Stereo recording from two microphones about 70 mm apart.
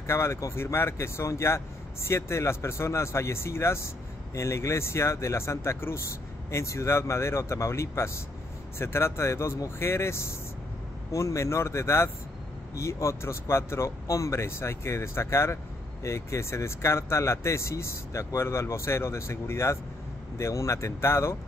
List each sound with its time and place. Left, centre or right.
0.0 s speech: left